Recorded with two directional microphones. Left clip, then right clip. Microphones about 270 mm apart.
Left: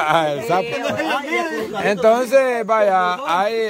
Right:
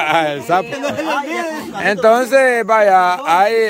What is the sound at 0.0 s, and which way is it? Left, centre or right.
Speech, centre.